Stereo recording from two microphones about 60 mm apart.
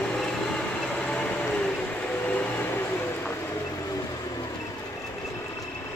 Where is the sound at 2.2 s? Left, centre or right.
Left.